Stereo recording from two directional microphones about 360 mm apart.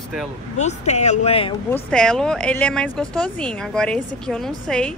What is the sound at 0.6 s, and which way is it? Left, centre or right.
Speech, centre.